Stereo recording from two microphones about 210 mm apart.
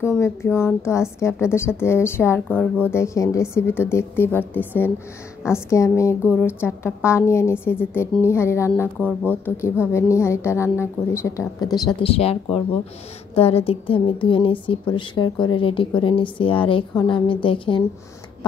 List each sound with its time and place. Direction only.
0.2 s a woman's voice: 10° left (ahead or behind)